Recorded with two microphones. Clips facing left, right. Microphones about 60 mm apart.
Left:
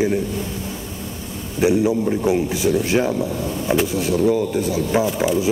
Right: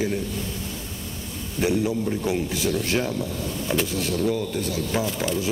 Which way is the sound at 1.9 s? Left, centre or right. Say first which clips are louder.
Left 6 dB; left.